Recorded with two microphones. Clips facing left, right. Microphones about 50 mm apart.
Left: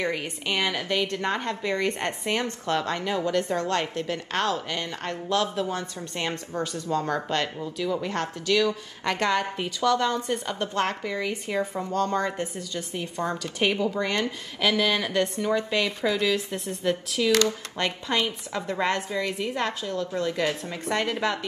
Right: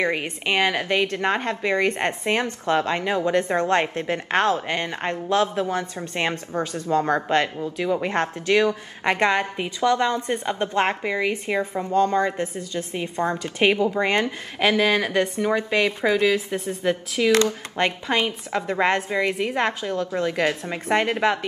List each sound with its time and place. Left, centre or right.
0.0 s a woman's voice: right